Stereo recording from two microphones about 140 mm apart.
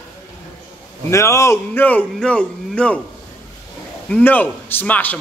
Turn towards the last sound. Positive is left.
turn(degrees=10)  # may be behind; listen again after turning